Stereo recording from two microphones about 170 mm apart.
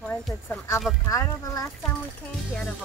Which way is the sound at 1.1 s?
20° left (ahead or behind).